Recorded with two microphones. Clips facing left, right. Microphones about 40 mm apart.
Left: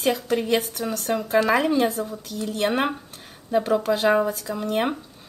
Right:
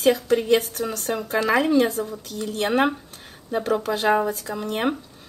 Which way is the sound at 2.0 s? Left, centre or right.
Right.